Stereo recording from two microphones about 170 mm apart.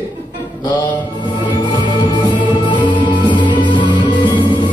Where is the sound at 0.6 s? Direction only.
25° left (ahead or behind).